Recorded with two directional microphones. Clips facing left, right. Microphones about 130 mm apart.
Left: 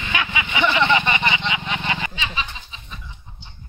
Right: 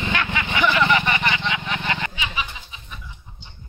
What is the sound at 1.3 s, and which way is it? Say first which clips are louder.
Vehicle: left 1 dB; 15° left (ahead or behind).